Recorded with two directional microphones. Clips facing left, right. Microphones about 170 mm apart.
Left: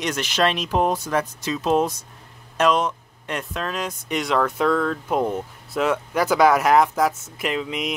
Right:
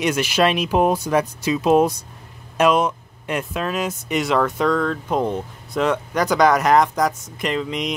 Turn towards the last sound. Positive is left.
turn(degrees=5)  # may be behind; listen again after turning